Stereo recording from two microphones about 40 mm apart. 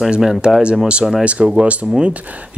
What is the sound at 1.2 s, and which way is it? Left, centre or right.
Speech, right.